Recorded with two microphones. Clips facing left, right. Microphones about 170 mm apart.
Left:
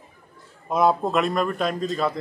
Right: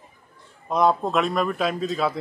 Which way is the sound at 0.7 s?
5° left (ahead or behind).